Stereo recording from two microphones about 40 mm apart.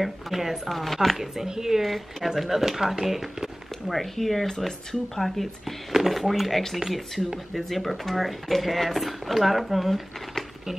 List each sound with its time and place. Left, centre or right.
0.0 s speech: centre
1.1 s speech: centre